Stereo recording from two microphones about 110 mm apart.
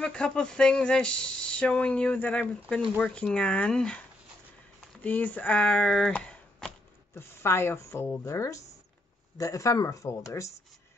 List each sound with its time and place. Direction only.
0.0 s speech: 10° left (ahead or behind)
5.0 s speech: 15° left (ahead or behind)
7.2 s speech: 20° left (ahead or behind)